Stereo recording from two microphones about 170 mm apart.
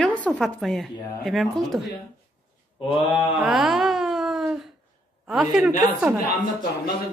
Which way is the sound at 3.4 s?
Centre (ahead or behind).